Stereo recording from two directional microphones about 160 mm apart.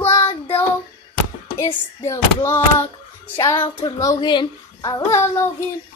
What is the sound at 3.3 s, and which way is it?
Child singing, 25° left (ahead or behind).